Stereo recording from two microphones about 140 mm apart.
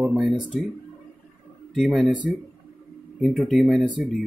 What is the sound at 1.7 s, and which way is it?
Speech, centre (ahead or behind).